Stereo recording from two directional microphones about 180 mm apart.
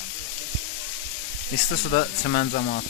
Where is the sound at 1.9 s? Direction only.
50° left (ahead or behind).